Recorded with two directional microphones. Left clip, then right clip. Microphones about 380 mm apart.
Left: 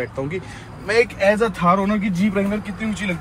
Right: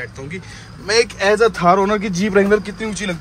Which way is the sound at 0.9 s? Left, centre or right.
Centre.